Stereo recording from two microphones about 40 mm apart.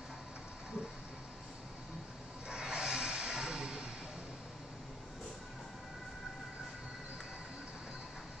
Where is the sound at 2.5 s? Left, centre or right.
Centre.